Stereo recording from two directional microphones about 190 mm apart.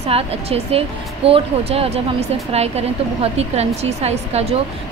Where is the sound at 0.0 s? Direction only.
30° right (ahead or behind).